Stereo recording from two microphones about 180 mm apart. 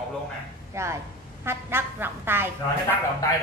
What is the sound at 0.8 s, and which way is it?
Speech, 15° right (ahead or behind).